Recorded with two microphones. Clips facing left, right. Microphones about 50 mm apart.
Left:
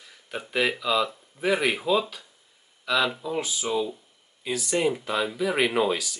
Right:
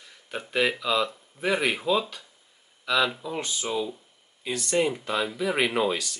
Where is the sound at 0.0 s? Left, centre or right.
Centre.